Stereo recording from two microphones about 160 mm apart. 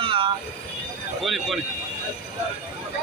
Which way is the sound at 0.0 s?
35° right (ahead or behind).